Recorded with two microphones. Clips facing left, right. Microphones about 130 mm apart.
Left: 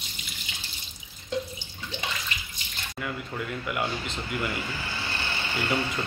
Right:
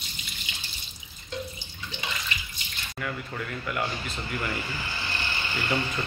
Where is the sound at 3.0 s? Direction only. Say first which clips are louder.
Left 1 dB; 15° left (ahead or behind).